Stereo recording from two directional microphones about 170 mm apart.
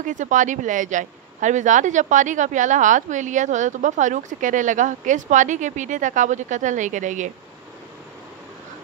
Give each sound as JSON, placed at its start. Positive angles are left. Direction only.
{"t": 0.0, "sound": "a woman's voice", "side_deg": -45}